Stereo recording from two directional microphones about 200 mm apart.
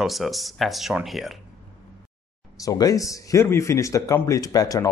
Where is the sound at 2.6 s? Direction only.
15° left (ahead or behind).